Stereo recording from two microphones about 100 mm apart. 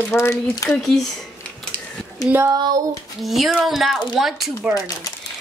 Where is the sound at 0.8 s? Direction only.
Centre (ahead or behind).